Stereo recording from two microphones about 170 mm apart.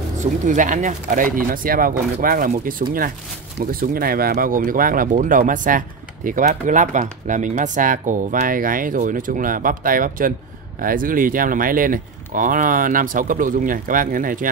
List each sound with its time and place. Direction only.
0.2 s speech: 45° right (ahead or behind)